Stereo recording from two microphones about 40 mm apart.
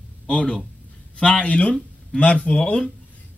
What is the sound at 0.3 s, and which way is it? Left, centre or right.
Speech, left.